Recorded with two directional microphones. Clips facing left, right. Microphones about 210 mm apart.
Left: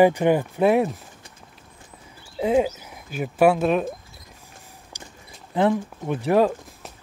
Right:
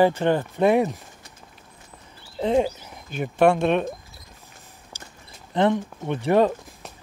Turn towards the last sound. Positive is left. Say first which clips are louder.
# even
turn(degrees=0)  # may be behind; listen again after turning